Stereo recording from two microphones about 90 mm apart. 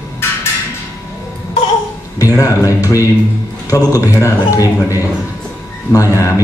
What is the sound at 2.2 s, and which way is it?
A man's voice, 40° left (ahead or behind).